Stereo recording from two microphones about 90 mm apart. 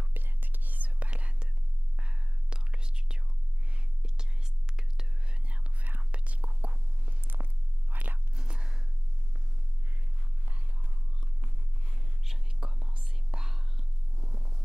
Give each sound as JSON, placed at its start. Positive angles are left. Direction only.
{"t": 0.0, "sound": "whispering", "side_deg": -20}
{"t": 7.9, "sound": "biting", "side_deg": -20}
{"t": 8.4, "sound": "gasp", "side_deg": -5}
{"t": 12.2, "sound": "whispering", "side_deg": -5}
{"t": 14.2, "sound": "a sound", "side_deg": -40}